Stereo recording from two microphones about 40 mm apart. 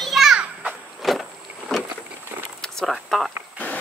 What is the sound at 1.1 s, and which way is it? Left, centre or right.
Vehicle, centre.